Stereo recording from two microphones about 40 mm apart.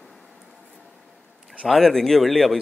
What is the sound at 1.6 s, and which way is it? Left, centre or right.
Speech, centre.